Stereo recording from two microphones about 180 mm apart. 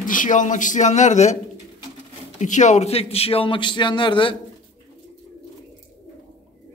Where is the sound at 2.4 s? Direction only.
40° left (ahead or behind); by 4.3 s 25° left (ahead or behind).